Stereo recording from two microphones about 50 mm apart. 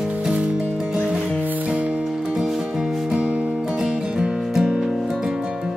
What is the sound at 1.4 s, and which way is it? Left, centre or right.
Music, right.